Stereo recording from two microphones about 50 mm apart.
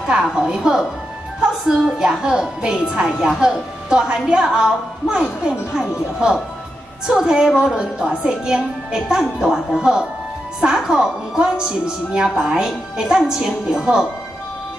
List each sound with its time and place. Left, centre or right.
0.2 s a woman's voice: centre